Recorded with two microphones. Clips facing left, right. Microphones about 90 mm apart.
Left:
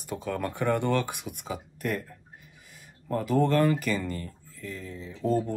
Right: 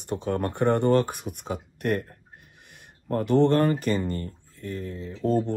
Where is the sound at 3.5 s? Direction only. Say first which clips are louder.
Right 2 dB; 40° right (ahead or behind).